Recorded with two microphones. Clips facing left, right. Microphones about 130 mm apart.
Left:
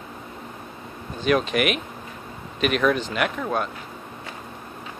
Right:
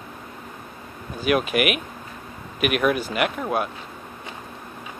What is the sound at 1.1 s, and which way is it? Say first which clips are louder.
Speech: even; 10° right (ahead or behind).